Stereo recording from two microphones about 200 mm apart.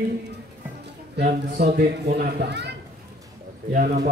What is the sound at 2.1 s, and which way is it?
Speech, 55° right (ahead or behind).